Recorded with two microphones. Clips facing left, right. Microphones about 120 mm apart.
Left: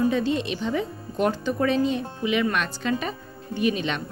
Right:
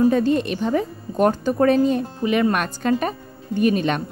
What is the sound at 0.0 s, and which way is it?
A woman's voice, 45° right (ahead or behind).